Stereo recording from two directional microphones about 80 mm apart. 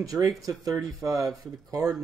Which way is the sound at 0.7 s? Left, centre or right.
Centre.